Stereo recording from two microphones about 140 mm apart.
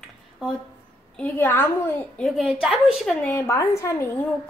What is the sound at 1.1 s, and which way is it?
A woman's voice, 10° left (ahead or behind).